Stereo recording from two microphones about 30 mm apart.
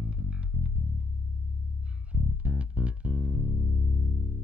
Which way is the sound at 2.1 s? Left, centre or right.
Right.